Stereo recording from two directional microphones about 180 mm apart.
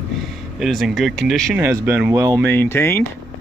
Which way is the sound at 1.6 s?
10° right (ahead or behind).